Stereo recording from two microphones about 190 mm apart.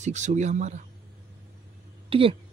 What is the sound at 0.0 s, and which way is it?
Speech, 40° right (ahead or behind).